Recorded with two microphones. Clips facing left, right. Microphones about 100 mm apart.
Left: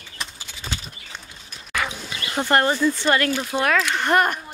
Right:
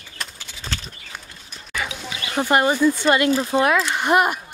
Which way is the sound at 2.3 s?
10° right (ahead or behind).